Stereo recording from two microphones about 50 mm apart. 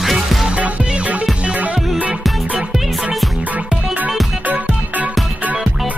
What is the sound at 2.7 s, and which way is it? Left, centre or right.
Music, centre.